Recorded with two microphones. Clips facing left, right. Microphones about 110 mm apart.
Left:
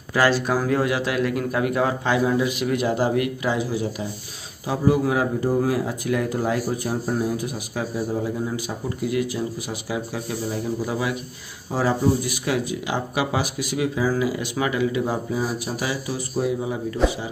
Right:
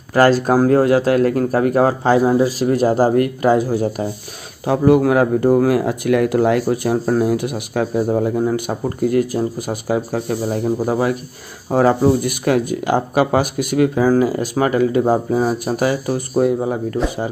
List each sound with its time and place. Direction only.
0.1 s speech: 40° right (ahead or behind)
4.6 s speech: 65° right (ahead or behind)